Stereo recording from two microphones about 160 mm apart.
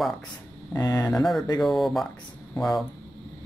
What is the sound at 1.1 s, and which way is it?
Speech, centre (ahead or behind).